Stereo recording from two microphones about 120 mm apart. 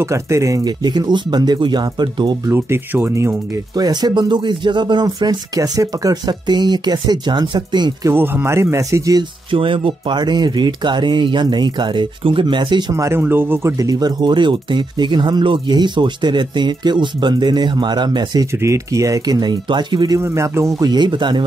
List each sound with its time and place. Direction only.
0.0 s speech: 25° right (ahead or behind)
2.4 s speech: 20° right (ahead or behind); by 8.1 s 40° right (ahead or behind)
8.1 s speech: 20° right (ahead or behind)
9.5 s speech: 45° right (ahead or behind)
12.9 s speech: 25° right (ahead or behind)
18.6 s speech: 25° right (ahead or behind)
20.2 s speech: 25° right (ahead or behind); by 21.5 s 40° right (ahead or behind)